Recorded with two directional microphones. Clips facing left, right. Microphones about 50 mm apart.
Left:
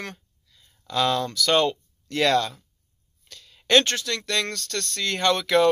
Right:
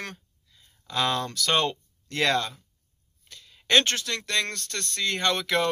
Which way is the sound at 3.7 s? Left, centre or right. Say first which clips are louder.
Left 3 dB; right.